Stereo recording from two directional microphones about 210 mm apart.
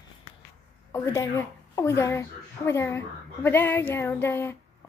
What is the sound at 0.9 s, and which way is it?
A woman's voice, 10° left (ahead or behind).